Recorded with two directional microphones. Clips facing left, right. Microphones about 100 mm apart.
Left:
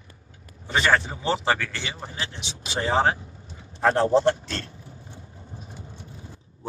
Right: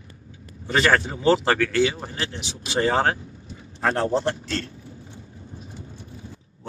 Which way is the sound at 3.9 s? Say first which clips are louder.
Left 4 dB; 30° left (ahead or behind).